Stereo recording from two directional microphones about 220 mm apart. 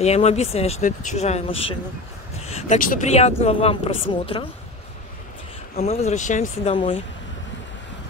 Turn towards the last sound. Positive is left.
turn(degrees=25)  # may be behind; listen again after turning